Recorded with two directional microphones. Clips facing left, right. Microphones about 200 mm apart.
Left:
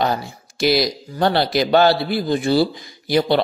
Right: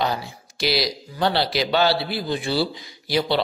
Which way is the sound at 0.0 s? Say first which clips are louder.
Left 4 dB; 50° left (ahead or behind).